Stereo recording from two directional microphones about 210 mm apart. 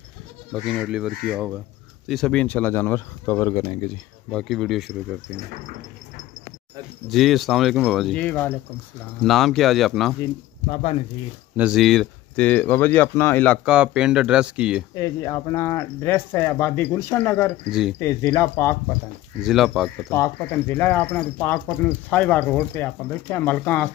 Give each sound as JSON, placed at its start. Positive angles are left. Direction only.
{"t": 0.5, "sound": "speech", "side_deg": 0}
{"t": 4.3, "sound": "speech", "side_deg": 0}
{"t": 7.1, "sound": "speech", "side_deg": 0}
{"t": 10.7, "sound": "speech", "side_deg": 30}
{"t": 11.5, "sound": "speech", "side_deg": -5}
{"t": 13.7, "sound": "speech", "side_deg": -5}
{"t": 15.0, "sound": "speech", "side_deg": 15}
{"t": 17.6, "sound": "speech", "side_deg": -5}
{"t": 18.0, "sound": "speech", "side_deg": 10}
{"t": 19.4, "sound": "speech", "side_deg": 0}
{"t": 20.1, "sound": "speech", "side_deg": 10}